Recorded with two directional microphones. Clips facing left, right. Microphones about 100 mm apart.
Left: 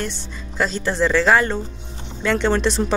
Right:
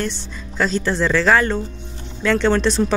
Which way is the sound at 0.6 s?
15° left (ahead or behind).